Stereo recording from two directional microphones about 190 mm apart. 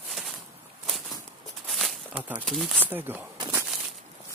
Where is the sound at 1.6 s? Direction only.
Centre (ahead or behind).